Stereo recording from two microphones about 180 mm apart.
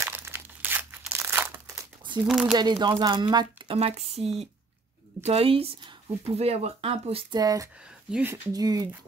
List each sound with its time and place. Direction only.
0.0 s crumpling: 15° right (ahead or behind)
2.2 s speech: 5° right (ahead or behind)
2.5 s a woman's voice: 25° right (ahead or behind)
7.3 s a woman's voice: 20° right (ahead or behind)
8.1 s speech: 10° right (ahead or behind)
8.5 s a woman's voice: 20° right (ahead or behind)